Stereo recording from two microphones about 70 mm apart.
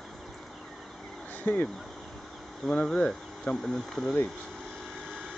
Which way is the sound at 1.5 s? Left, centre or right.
Left.